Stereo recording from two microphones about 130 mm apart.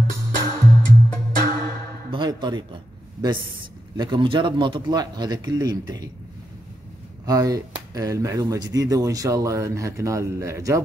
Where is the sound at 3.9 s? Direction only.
35° right (ahead or behind).